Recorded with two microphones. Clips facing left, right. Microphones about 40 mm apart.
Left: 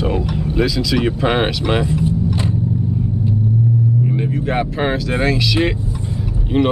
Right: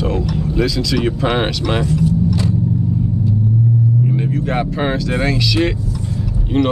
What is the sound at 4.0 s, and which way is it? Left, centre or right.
Speech, centre.